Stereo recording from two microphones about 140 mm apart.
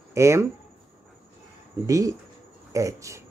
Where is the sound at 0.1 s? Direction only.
20° right (ahead or behind).